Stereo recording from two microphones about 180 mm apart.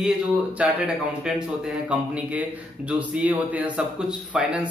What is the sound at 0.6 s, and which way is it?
A man's voice, 5° right (ahead or behind).